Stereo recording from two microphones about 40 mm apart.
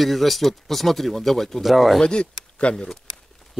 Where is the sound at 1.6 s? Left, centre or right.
Centre.